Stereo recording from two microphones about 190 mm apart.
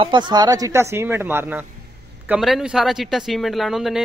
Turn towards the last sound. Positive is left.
turn(degrees=0)  # may be behind; listen again after turning